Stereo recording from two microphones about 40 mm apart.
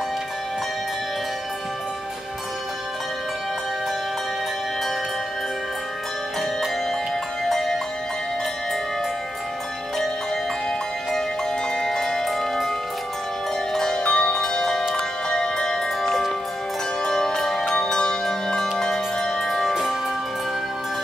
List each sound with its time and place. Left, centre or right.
7.4 s music: centre
11.7 s music: centre
12.3 s music: centre
13.7 s zither: centre
15.0 s music: centre
17.7 s music: centre